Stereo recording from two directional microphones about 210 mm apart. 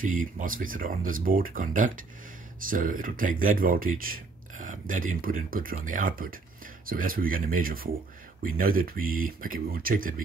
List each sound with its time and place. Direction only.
0.0 s speech: 40° right (ahead or behind)